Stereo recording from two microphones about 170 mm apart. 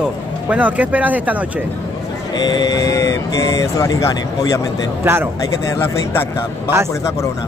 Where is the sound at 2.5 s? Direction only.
20° left (ahead or behind).